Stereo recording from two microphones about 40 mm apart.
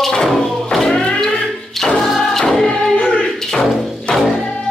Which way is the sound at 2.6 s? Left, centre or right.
Centre.